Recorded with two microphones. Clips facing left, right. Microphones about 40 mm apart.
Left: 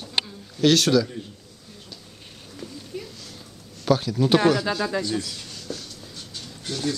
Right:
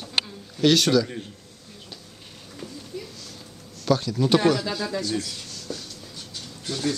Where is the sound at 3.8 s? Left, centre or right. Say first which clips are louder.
Left 1 dB; centre.